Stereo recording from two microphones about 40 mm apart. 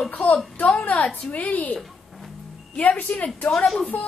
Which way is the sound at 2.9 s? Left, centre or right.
Left.